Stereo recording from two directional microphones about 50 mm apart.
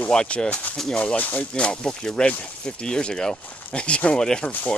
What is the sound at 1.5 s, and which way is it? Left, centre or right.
Speech, centre.